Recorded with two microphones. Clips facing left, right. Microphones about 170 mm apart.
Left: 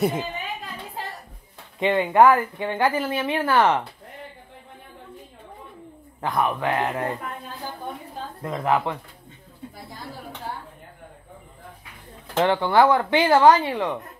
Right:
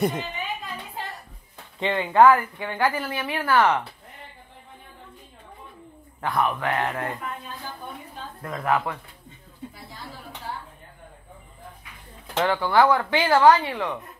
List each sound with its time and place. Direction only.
0.0 s a woman's voice: 10° left (ahead or behind)
1.8 s speech: 15° left (ahead or behind)
6.2 s speech: 20° left (ahead or behind)
8.4 s speech: 20° left (ahead or behind)
12.4 s speech: 25° left (ahead or behind)